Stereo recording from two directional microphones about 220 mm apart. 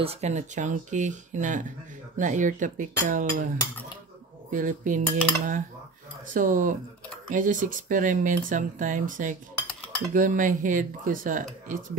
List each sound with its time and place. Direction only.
0.0 s speech: 30° right (ahead or behind)
4.5 s speech: 35° right (ahead or behind)